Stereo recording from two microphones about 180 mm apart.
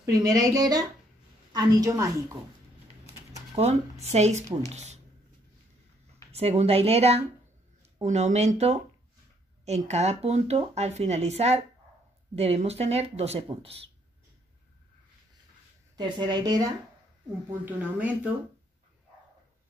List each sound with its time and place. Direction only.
0.0 s a woman's voice: 20° right (ahead or behind)
3.6 s a woman's voice: 35° right (ahead or behind)
6.3 s a woman's voice: 35° right (ahead or behind)
16.0 s a woman's voice: 25° right (ahead or behind)
17.6 s speech: 10° right (ahead or behind)